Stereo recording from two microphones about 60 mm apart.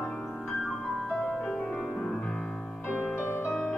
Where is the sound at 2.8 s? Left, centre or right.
Left.